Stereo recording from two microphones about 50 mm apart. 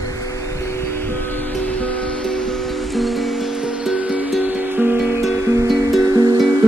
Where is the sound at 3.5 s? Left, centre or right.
Centre.